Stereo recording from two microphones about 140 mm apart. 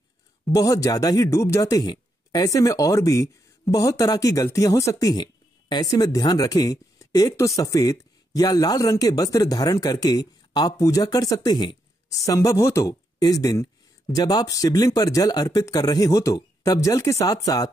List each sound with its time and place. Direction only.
0.5 s speech: 25° left (ahead or behind)